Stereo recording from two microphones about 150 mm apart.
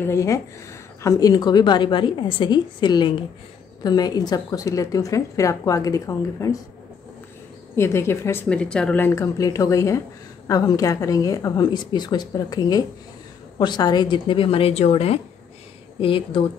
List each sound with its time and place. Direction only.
0.0 s a woman's voice: 20° left (ahead or behind)
7.7 s a woman's voice: 15° left (ahead or behind)
8.5 s a woman's voice: 5° left (ahead or behind); by 16.4 s 35° left (ahead or behind)